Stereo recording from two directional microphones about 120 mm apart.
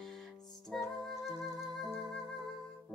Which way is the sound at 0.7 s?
Centre (ahead or behind).